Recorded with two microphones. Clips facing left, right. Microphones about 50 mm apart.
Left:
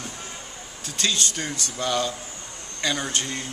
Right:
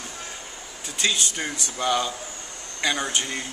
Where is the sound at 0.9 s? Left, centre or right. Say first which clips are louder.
Right 1 dB; centre.